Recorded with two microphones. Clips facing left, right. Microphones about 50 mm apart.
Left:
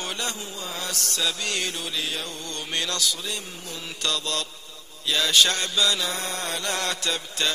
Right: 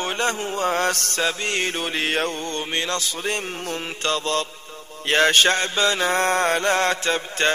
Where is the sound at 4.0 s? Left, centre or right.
Right.